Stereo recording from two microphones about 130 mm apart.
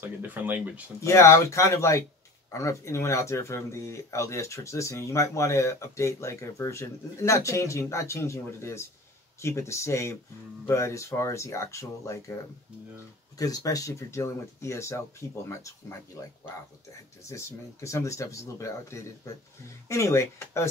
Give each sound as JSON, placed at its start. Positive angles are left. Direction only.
{"t": 0.0, "sound": "speech", "side_deg": -15}
{"t": 1.0, "sound": "speech", "side_deg": 20}
{"t": 13.4, "sound": "speech", "side_deg": 25}
{"t": 17.2, "sound": "speech", "side_deg": 25}